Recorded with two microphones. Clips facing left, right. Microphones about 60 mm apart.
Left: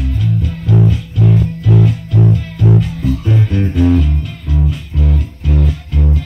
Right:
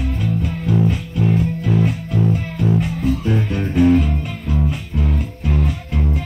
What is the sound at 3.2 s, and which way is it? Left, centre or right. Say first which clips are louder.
Music: left 3 dB; right.